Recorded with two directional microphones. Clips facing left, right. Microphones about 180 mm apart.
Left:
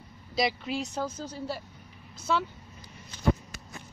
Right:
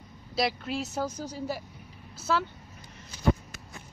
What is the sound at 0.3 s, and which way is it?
Speech, centre (ahead or behind).